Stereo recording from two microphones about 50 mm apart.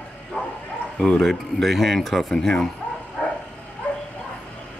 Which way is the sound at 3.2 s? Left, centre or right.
Left.